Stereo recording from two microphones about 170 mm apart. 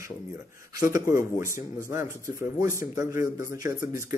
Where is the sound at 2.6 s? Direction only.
15° right (ahead or behind).